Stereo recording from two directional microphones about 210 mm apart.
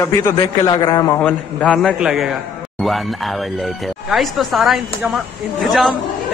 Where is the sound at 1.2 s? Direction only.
5° left (ahead or behind).